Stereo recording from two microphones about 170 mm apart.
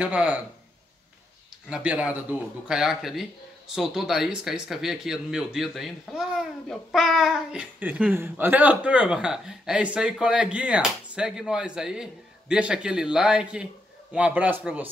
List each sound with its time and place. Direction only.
0.0 s a man's voice: 10° right (ahead or behind)
1.7 s a man's voice: 5° right (ahead or behind)